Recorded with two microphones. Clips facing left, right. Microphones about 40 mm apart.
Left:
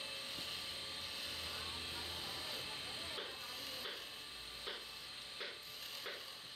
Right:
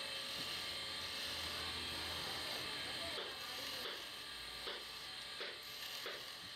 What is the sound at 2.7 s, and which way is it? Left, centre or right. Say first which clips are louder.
Vehicle: right 2 dB; centre.